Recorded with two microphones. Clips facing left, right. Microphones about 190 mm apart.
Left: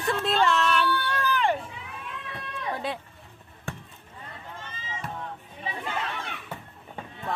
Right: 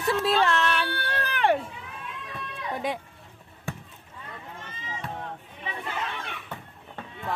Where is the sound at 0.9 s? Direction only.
55° right (ahead or behind).